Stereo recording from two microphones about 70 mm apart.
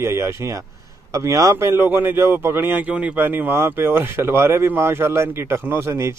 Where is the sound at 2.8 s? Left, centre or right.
Right.